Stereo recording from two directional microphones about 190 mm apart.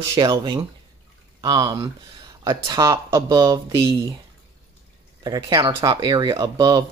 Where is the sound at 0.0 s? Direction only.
20° right (ahead or behind).